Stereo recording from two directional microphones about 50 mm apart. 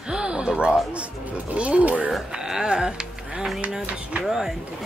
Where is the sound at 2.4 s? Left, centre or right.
Centre.